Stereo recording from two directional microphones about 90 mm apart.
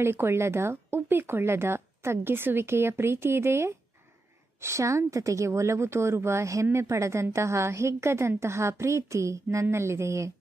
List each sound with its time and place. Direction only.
0.0 s a woman's voice: 25° right (ahead or behind)